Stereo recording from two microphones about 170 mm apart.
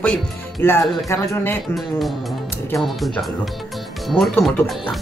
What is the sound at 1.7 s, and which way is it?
Speech, centre (ahead or behind).